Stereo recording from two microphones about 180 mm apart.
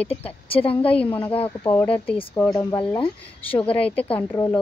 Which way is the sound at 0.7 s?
5° left (ahead or behind).